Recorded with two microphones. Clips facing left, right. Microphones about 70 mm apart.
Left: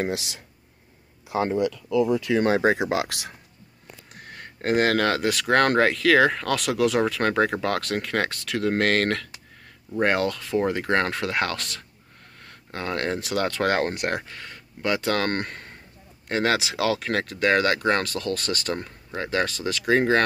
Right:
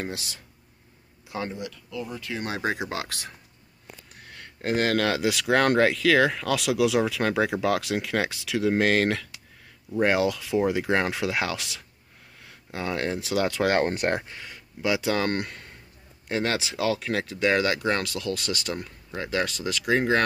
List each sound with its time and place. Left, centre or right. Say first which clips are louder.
0.0 s speech: left 6 dB; left
2.0 s speech: left 12 dB; left
2.4 s speech: left 4 dB; left
4.1 s speech: left 7 dB; centre
16.5 s speech: left 2 dB; left
17.0 s speech: left 2 dB; centre
17.8 s speech: left 3 dB; left
19.5 s speech: left 3 dB; centre